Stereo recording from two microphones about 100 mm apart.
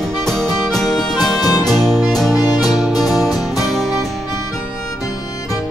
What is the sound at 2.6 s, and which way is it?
Music, centre (ahead or behind).